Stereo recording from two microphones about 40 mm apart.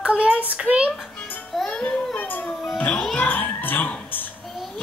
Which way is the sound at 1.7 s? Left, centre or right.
Left.